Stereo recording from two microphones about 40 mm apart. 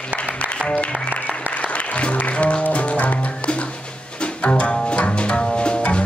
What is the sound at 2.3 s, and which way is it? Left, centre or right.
Music, left.